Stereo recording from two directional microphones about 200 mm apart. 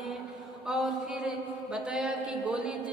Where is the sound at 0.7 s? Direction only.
Centre (ahead or behind).